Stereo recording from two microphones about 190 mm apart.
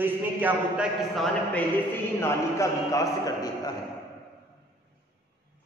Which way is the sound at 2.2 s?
15° left (ahead or behind).